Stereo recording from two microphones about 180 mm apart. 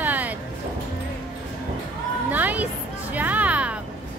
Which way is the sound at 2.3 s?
10° right (ahead or behind).